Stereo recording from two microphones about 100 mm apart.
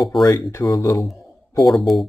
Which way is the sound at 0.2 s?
30° left (ahead or behind).